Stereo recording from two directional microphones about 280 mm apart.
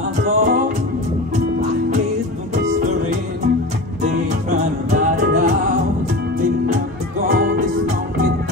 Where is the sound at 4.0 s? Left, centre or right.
Right.